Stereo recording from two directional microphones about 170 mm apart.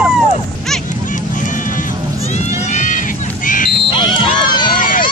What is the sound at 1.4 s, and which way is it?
Music, 50° left (ahead or behind).